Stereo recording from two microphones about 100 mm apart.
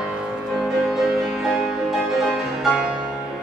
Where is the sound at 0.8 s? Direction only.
5° right (ahead or behind).